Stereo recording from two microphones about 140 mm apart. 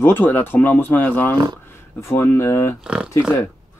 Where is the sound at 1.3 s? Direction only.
30° right (ahead or behind).